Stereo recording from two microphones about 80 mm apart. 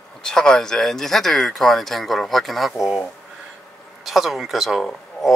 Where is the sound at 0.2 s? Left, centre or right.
Centre.